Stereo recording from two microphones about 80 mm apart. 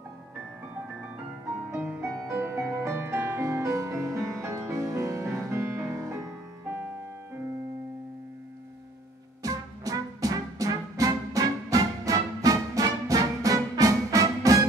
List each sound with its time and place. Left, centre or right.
2.0 s music: right
9.4 s music: right